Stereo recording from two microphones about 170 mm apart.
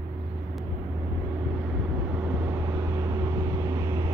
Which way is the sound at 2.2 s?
15° right (ahead or behind).